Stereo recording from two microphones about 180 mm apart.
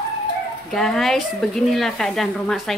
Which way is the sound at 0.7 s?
Centre (ahead or behind).